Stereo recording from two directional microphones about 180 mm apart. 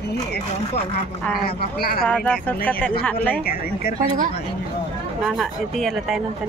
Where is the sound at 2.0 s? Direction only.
5° left (ahead or behind).